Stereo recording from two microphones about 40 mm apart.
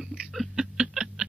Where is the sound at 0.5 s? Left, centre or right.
Centre.